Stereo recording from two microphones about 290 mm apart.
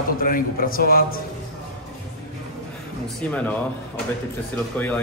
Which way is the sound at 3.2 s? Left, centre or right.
Centre.